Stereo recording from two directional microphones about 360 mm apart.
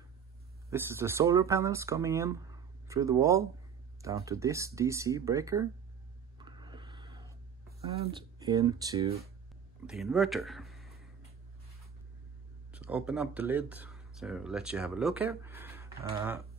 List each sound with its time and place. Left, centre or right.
0.7 s speech: centre
6.3 s a sound: centre
8.0 s speech: centre
12.7 s speech: centre